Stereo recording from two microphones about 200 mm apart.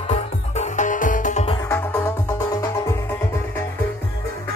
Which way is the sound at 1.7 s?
10° left (ahead or behind).